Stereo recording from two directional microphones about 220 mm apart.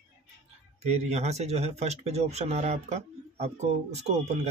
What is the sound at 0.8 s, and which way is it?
Speech, 30° right (ahead or behind).